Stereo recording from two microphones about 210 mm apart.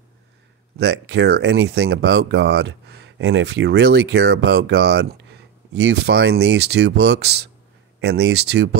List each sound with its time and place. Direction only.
0.7 s speech: 55° right (ahead or behind)